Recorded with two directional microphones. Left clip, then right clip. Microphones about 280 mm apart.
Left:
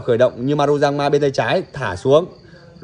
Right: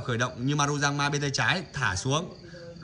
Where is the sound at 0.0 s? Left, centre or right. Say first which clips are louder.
Left 14 dB; centre.